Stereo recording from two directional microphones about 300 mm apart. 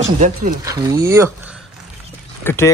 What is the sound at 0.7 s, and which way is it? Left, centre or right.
Speech, centre.